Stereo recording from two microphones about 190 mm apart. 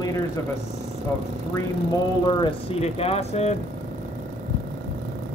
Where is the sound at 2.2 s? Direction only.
25° left (ahead or behind).